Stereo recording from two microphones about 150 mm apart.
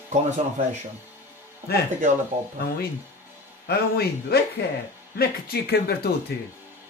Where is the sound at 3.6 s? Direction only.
90° left.